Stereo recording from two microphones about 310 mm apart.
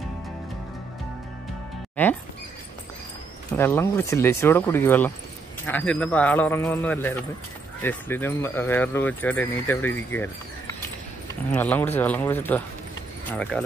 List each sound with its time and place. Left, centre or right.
2.0 s speech: centre
3.5 s speech: centre
11.5 s speech: centre